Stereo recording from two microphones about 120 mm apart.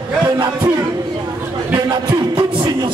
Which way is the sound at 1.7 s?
40° right (ahead or behind).